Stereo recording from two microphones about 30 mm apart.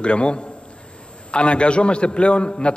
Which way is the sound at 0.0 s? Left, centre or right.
Left.